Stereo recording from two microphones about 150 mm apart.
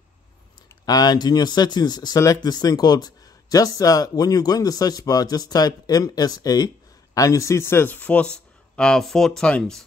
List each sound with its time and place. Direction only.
0.8 s speech: 25° left (ahead or behind); by 9.8 s 5° left (ahead or behind)